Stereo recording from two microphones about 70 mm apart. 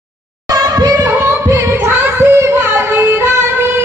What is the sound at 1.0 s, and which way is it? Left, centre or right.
Singing, right.